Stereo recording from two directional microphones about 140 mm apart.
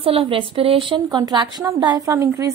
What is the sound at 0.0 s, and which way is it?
A woman's voice, 40° right (ahead or behind).